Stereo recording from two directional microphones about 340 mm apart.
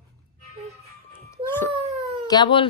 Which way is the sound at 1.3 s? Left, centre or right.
Centre.